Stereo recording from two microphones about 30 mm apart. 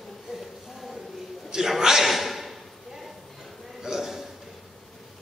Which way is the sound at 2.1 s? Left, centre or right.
Centre.